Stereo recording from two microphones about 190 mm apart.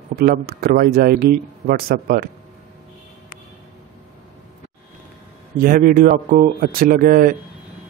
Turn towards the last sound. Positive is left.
turn(degrees=-50)  # may be behind; listen again after turning